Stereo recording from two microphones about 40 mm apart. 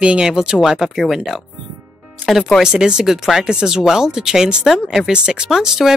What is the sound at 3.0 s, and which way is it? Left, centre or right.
Speech, centre.